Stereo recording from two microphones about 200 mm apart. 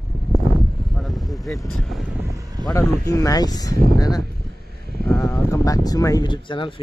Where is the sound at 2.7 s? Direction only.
15° left (ahead or behind).